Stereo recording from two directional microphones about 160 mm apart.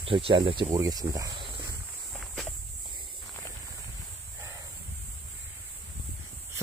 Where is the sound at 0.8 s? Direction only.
20° right (ahead or behind).